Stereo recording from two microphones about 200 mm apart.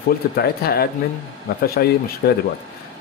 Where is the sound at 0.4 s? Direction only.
50° left (ahead or behind).